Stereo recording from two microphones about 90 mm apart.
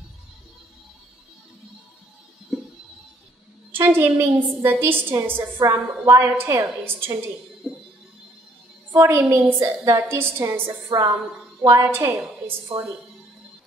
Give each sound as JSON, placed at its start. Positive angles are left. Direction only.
{"t": 3.7, "sound": "a woman's voice", "side_deg": -25}
{"t": 8.9, "sound": "a woman's voice", "side_deg": -30}
{"t": 10.9, "sound": "a woman's voice", "side_deg": -40}